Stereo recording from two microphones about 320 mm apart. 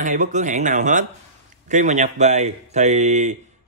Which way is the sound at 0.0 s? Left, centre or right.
Right.